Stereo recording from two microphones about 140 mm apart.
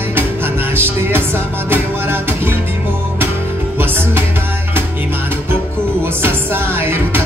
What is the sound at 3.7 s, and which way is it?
Music, 15° right (ahead or behind).